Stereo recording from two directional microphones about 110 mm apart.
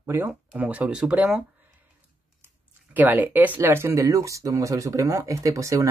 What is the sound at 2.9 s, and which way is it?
Speech, 15° right (ahead or behind).